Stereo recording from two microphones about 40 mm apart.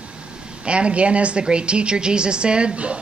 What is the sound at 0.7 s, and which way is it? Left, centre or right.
Speech, right.